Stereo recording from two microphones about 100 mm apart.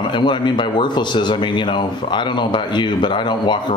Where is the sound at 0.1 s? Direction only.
50° left (ahead or behind).